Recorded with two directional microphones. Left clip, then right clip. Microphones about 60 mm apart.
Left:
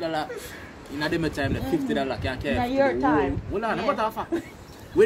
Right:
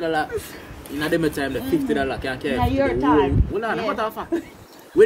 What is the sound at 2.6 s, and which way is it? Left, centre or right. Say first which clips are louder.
Speech: even; right.